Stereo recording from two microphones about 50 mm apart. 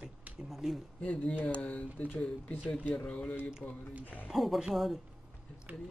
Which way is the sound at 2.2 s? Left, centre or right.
Left.